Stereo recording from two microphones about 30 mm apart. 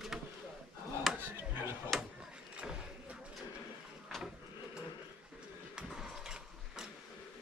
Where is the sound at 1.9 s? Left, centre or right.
Centre.